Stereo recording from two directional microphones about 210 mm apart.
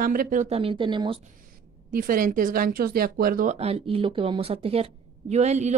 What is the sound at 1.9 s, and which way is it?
Speech, 40° right (ahead or behind).